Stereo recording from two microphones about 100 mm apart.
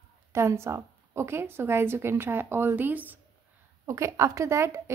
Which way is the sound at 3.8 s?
30° right (ahead or behind).